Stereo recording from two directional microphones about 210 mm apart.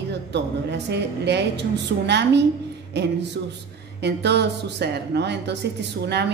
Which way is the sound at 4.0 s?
50° right (ahead or behind).